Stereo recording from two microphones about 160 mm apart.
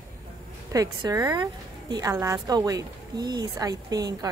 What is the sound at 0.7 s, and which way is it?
A woman's voice, 20° right (ahead or behind).